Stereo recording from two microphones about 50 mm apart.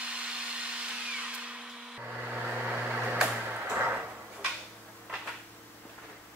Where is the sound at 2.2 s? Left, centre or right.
Right.